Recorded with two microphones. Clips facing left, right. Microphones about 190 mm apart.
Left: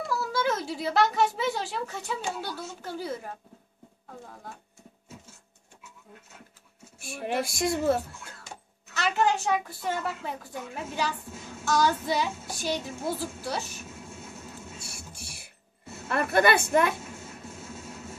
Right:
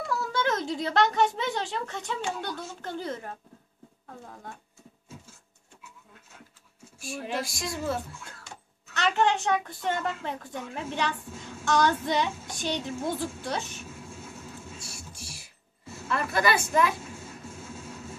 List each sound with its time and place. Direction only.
0.1 s a woman's voice: 5° left (ahead or behind)
7.0 s speech: 60° left (ahead or behind)
8.9 s a woman's voice: 5° left (ahead or behind)
14.8 s a sound: 60° left (ahead or behind)
16.1 s speech: 55° left (ahead or behind)